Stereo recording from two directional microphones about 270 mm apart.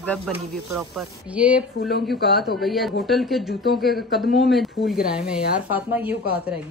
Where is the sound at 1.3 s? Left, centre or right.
Centre.